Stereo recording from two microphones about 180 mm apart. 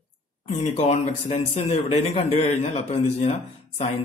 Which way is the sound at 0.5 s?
35° left (ahead or behind).